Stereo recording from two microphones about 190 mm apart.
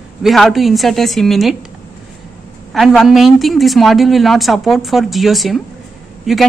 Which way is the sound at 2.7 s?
Centre (ahead or behind).